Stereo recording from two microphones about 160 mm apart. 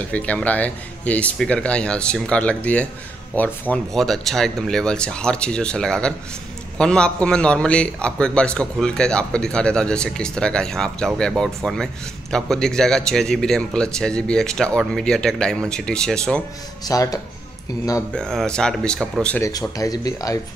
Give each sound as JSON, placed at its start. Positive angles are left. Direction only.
{"t": 0.1, "sound": "a man's voice", "side_deg": 10}
{"t": 16.8, "sound": "speech", "side_deg": 20}
{"t": 18.1, "sound": "a man's voice", "side_deg": 5}
{"t": 19.3, "sound": "speech", "side_deg": 20}